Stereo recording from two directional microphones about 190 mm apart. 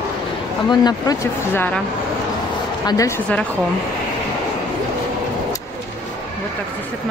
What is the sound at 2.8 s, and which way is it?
Speech, 20° left (ahead or behind).